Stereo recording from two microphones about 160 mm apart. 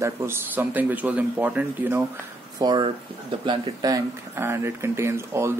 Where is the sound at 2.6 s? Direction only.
30° right (ahead or behind).